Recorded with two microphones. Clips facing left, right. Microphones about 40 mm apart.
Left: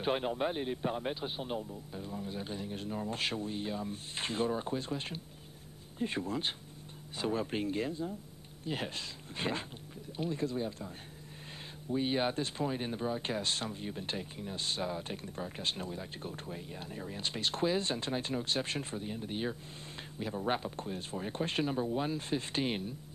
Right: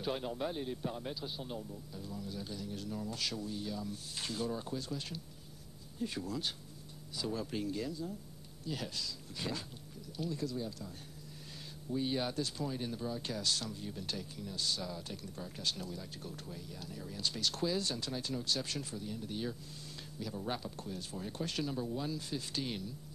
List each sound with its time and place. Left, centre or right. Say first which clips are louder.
0.0 s speech: left 5 dB; left
11.9 s speech: left 4 dB; left